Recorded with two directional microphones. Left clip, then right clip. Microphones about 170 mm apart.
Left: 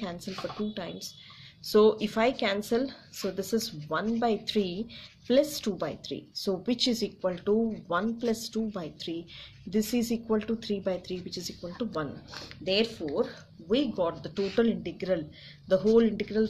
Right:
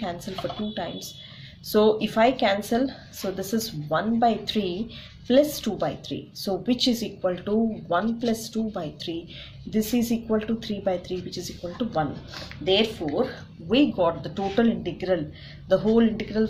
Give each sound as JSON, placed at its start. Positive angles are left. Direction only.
{"t": 0.0, "sound": "a woman's voice", "side_deg": 45}